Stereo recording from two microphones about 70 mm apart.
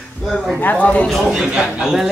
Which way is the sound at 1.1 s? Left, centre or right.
Centre.